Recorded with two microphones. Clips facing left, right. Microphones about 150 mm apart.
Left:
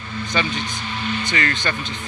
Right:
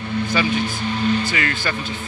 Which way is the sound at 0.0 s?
60° right (ahead or behind).